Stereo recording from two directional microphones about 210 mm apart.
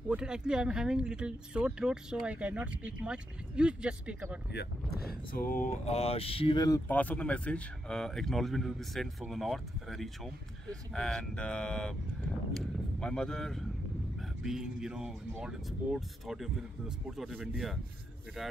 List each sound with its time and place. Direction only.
0.1 s speech: 5° right (ahead or behind)
4.5 s speech: 50° left (ahead or behind); by 6.8 s 20° left (ahead or behind)
6.9 s speech: 5° left (ahead or behind)